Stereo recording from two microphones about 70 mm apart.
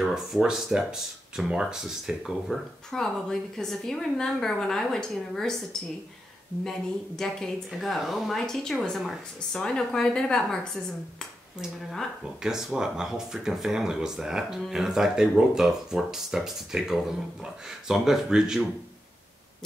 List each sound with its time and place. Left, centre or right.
0.0 s a woman's voice: centre
2.9 s a woman's voice: centre
12.4 s speech: centre